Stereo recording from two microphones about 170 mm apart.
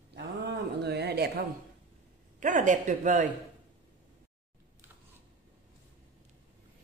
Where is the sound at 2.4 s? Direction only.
45° right (ahead or behind).